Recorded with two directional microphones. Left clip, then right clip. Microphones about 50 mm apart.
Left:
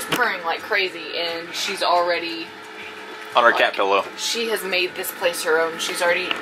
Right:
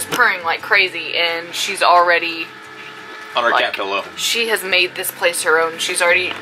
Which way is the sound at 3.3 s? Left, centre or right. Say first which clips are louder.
Even; left.